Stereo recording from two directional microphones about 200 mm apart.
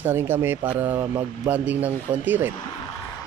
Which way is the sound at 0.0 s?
10° right (ahead or behind).